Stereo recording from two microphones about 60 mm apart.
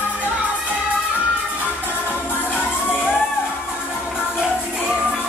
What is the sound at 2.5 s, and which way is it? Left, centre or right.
Crowd, left.